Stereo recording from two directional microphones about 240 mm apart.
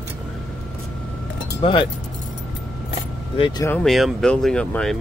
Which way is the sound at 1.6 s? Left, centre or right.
Left.